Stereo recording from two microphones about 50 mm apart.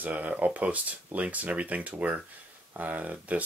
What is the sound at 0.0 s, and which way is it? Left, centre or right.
Speech, right.